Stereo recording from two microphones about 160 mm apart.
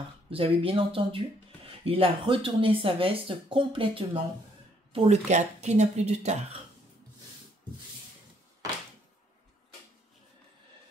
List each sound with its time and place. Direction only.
0.3 s speech: 35° right (ahead or behind)